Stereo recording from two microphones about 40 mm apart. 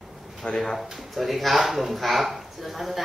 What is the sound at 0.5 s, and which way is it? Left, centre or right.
Speech, left.